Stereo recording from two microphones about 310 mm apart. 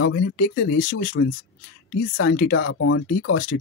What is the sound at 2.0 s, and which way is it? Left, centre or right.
Speech, left.